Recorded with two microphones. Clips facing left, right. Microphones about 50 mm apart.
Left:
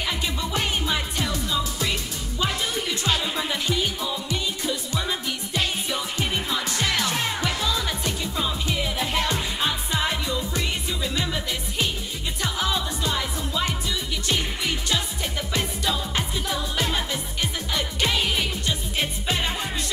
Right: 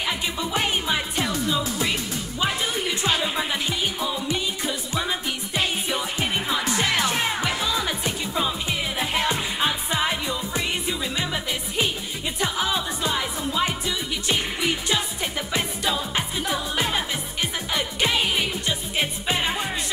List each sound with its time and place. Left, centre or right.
0.4 s music: centre